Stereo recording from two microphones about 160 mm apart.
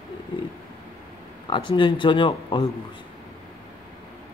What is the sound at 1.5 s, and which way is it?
Speech, 30° left (ahead or behind).